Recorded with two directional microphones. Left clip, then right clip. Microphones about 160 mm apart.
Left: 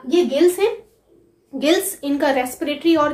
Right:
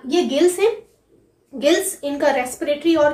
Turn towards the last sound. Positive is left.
turn(degrees=20)  # may be behind; listen again after turning